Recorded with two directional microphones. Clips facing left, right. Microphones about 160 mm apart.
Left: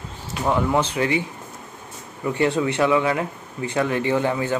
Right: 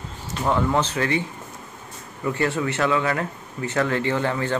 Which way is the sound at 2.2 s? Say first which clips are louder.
Left 3 dB; 20° left (ahead or behind).